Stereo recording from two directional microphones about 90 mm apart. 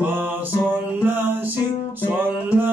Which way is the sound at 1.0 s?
20° right (ahead or behind).